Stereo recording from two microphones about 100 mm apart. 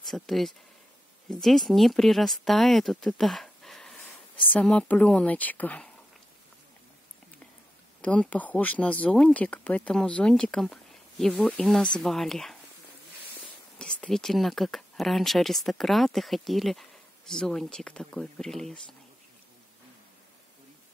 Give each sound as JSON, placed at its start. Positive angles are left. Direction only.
{"t": 0.0, "sound": "speech", "side_deg": 0}
{"t": 8.0, "sound": "speech", "side_deg": 10}
{"t": 13.7, "sound": "speech", "side_deg": 10}